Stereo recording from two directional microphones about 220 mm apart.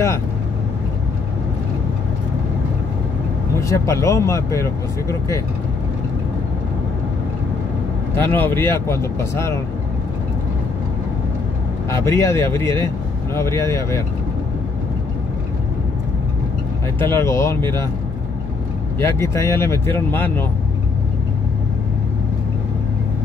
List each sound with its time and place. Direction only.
3.6 s speech: 15° left (ahead or behind)
8.1 s speech: 10° left (ahead or behind)
11.9 s speech: 15° left (ahead or behind)
17.0 s speech: 10° left (ahead or behind)
18.9 s speech: 10° left (ahead or behind)